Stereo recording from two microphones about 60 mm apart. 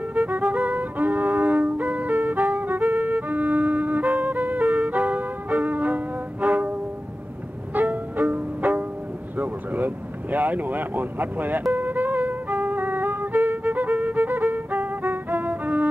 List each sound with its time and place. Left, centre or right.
0.1 s music: right
9.4 s vehicle: right
11.7 s music: right